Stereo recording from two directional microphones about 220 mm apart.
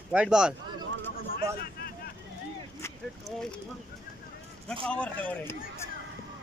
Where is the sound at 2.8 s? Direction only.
10° left (ahead or behind).